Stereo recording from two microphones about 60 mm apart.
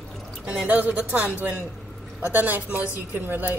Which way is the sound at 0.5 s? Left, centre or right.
Right.